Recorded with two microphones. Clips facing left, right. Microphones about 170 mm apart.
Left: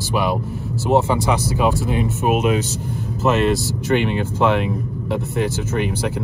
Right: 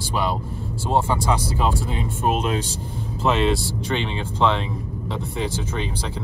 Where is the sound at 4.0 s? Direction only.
55° left (ahead or behind).